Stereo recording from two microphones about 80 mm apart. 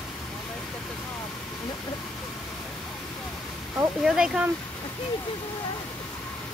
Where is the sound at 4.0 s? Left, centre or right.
Centre.